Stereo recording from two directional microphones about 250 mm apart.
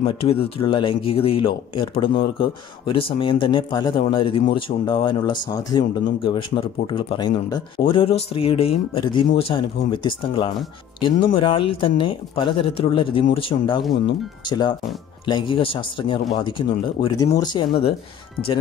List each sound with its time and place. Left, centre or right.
0.0 s speech: left